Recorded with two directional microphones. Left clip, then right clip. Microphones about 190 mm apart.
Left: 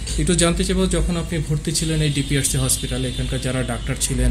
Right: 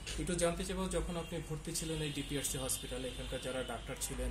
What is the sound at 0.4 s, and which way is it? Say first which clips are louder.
Speech: left 14 dB; 35° left (ahead or behind).